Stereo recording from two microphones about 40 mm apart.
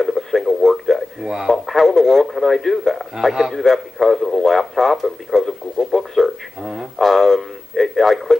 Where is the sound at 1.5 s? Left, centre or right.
Centre.